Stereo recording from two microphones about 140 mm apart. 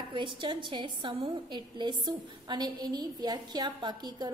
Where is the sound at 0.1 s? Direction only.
35° right (ahead or behind).